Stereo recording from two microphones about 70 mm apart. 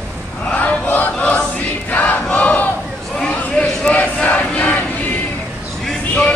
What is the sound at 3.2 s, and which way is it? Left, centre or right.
Crowd, centre.